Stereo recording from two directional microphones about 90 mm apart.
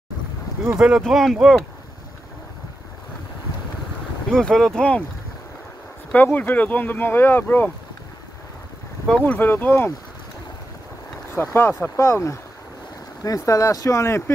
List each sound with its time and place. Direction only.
0.7 s speech: 10° right (ahead or behind)
1.0 s speech: centre (ahead or behind)
4.3 s speech: 5° left (ahead or behind)
6.1 s speech: 20° left (ahead or behind)
9.2 s speech: 20° left (ahead or behind)
11.5 s speech: 30° left (ahead or behind)